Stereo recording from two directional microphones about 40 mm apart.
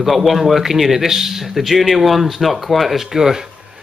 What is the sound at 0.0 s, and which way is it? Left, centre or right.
A man's voice, centre.